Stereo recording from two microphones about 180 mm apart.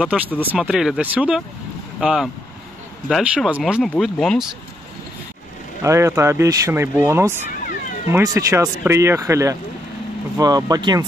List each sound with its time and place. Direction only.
0.0 s speech: 5° right (ahead or behind)
5.8 s speech: 15° right (ahead or behind)